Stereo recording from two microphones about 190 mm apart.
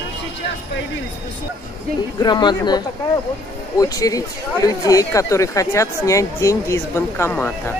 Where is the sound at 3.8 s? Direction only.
20° left (ahead or behind).